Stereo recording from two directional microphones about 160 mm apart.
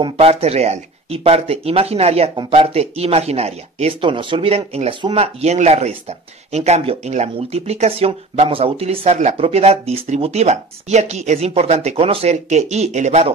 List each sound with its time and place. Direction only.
0.0 s speech: 40° right (ahead or behind)